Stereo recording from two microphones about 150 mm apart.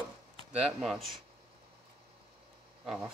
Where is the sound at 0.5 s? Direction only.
5° right (ahead or behind).